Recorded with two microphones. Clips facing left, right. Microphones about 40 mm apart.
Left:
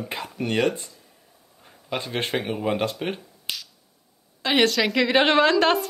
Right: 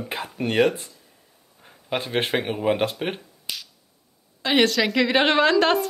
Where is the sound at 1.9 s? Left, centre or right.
Right.